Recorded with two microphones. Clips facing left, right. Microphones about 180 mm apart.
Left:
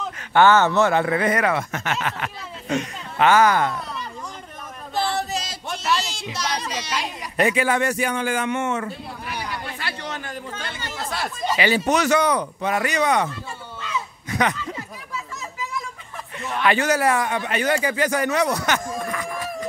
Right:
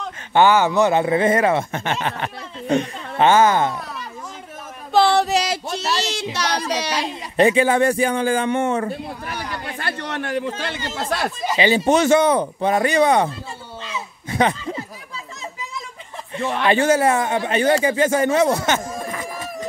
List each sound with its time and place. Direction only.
0.3 s speech: 15° right (ahead or behind)
4.9 s a sound: 80° right
5.9 s speech: 70° right (ahead or behind)
6.9 s speech: 30° right (ahead or behind)
9.8 s speech: 55° right (ahead or behind)
11.5 s a man's voice: 25° right (ahead or behind)
16.6 s speech: 25° right (ahead or behind)